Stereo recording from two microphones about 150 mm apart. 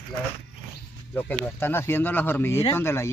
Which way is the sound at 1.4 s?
15° left (ahead or behind).